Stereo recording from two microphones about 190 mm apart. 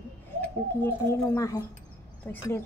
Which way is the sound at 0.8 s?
15° left (ahead or behind).